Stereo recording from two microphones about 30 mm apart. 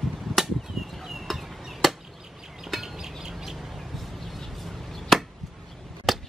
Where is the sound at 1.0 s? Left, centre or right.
Centre.